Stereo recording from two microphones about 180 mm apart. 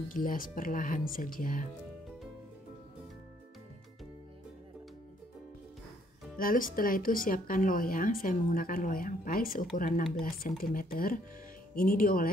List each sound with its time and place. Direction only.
0.1 s speech: 50° left (ahead or behind)
6.3 s speech: 50° left (ahead or behind)